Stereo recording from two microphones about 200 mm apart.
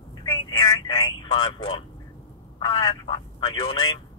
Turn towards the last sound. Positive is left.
turn(degrees=20)  # may be behind; listen again after turning